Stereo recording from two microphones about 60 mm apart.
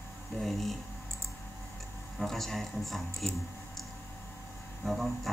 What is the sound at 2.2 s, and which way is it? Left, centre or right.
Speech, centre.